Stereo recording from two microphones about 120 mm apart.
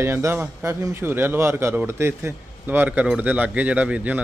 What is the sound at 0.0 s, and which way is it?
A man's voice, 20° right (ahead or behind).